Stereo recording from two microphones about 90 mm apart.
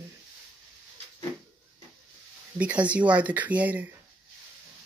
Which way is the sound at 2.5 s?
15° right (ahead or behind).